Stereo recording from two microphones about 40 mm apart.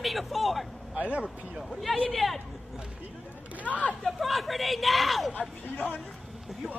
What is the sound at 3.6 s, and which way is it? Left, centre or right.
Speech, left.